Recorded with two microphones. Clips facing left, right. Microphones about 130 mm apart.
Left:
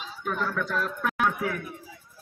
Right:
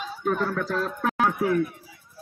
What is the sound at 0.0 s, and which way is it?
A man's voice, 45° right (ahead or behind).